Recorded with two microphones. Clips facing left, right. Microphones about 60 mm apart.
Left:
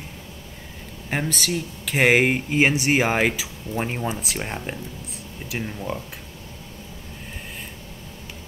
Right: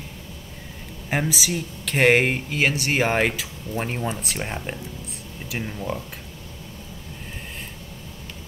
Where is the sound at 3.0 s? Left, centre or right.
Centre.